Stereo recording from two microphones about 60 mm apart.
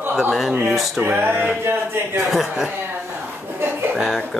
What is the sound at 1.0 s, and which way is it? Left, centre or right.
Music, right.